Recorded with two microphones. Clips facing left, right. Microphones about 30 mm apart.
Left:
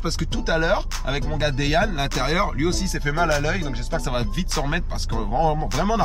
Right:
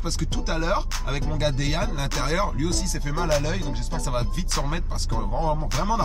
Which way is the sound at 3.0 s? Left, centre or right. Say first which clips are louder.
Left 9 dB; left.